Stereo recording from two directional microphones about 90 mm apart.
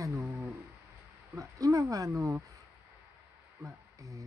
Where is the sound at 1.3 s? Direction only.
35° right (ahead or behind).